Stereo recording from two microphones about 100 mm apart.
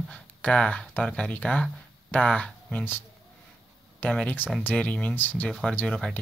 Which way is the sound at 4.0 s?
10° left (ahead or behind).